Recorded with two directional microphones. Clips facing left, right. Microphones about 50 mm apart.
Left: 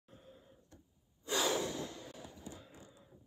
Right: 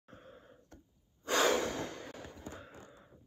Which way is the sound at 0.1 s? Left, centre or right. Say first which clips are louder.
Right 4 dB; right.